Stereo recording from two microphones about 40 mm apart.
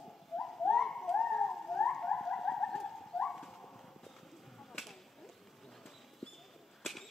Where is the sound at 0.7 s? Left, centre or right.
Centre.